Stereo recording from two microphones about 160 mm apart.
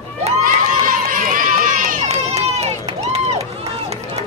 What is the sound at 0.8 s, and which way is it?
Run, 60° right (ahead or behind).